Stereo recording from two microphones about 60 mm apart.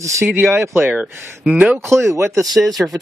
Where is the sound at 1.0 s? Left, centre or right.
Centre.